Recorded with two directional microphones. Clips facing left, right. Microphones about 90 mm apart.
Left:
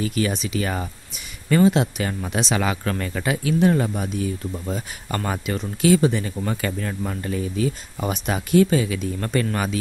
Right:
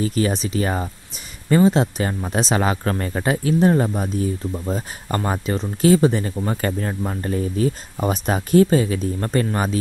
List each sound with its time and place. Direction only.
0.0 s speech: 35° right (ahead or behind)